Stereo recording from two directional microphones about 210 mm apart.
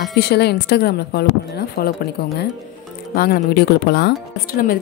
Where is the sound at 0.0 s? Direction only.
50° left (ahead or behind).